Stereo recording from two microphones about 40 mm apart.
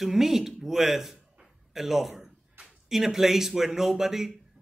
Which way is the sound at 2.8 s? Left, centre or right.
Centre.